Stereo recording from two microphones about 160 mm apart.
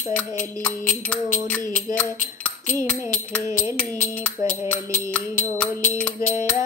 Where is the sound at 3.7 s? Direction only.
10° left (ahead or behind).